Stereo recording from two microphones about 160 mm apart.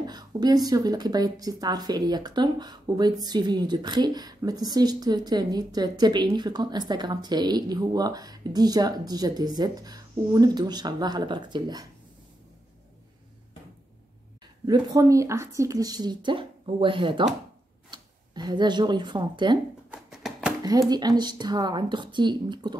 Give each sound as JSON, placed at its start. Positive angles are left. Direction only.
{"t": 0.0, "sound": "speech", "side_deg": -25}
{"t": 14.7, "sound": "speech", "side_deg": -20}
{"t": 19.9, "sound": "a sound", "side_deg": 0}
{"t": 20.9, "sound": "speech", "side_deg": -25}